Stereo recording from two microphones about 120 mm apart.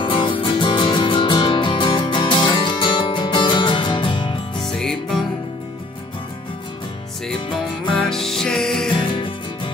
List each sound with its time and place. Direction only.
0.0 s music: 45° left (ahead or behind)
4.6 s music: 5° left (ahead or behind)
7.9 s music: 5° left (ahead or behind)
8.9 s music: 40° left (ahead or behind)